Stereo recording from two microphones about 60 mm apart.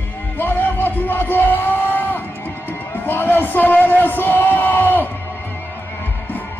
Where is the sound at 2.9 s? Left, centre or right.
Left.